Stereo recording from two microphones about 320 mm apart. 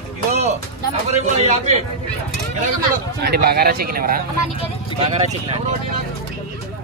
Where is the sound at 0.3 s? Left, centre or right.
Right.